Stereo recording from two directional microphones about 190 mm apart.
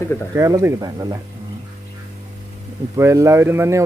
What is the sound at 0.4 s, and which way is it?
Speech, 15° right (ahead or behind).